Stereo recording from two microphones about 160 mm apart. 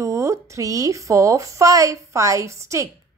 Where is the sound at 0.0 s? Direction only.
20° right (ahead or behind).